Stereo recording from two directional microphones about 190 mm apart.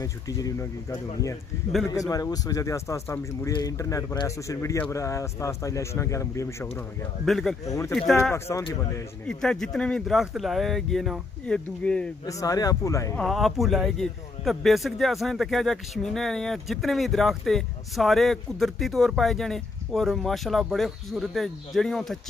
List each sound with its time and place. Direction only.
0.0 s speech: 20° left (ahead or behind)
1.9 s speech: 20° left (ahead or behind)
7.2 s a man's voice: centre (ahead or behind)
7.6 s speech: 15° left (ahead or behind)
8.1 s a man's voice: centre (ahead or behind)
8.5 s speech: 15° left (ahead or behind)
9.3 s a man's voice: 5° left (ahead or behind)
12.3 s speech: 20° left (ahead or behind)
13.1 s a man's voice: centre (ahead or behind)